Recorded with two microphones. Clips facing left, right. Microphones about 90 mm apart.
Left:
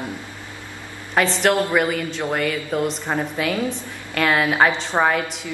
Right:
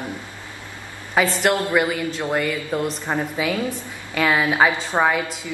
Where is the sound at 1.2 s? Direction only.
5° right (ahead or behind).